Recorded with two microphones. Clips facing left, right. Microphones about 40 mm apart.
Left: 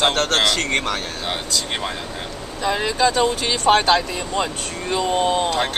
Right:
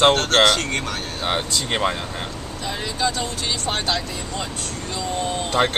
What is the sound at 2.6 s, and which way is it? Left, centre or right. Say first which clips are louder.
Speech: left 6 dB; left.